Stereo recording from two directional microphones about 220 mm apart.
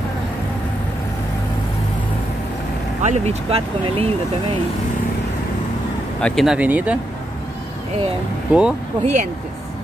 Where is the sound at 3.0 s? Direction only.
30° right (ahead or behind).